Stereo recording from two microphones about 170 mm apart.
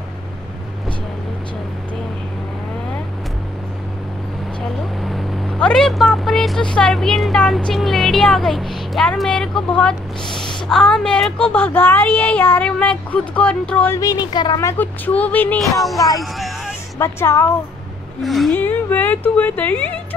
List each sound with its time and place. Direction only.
5.0 s a woman's voice: 5° left (ahead or behind)
13.9 s a woman's voice: 20° left (ahead or behind)
16.2 s music: centre (ahead or behind)
17.0 s a woman's voice: 15° left (ahead or behind)
18.2 s a woman's voice: centre (ahead or behind)
18.5 s a woman's voice: 10° left (ahead or behind)